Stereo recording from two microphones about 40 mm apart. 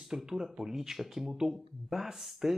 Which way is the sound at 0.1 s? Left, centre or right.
Centre.